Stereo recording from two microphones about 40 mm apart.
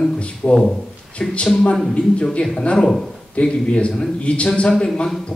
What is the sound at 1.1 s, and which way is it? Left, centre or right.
Speech, left.